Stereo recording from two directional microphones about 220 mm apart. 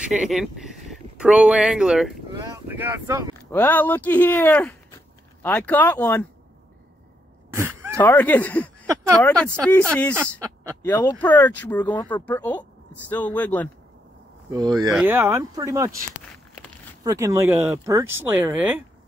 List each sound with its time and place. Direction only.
0.2 s speech: centre (ahead or behind)
2.3 s speech: 15° right (ahead or behind)
3.5 s speech: 10° left (ahead or behind)
7.5 s a sound: 10° right (ahead or behind)
8.0 s speech: 10° left (ahead or behind)
10.1 s speech: 10° right (ahead or behind)
10.8 s speech: 10° left (ahead or behind)
14.5 s speech: 20° right (ahead or behind)
17.0 s speech: 15° right (ahead or behind)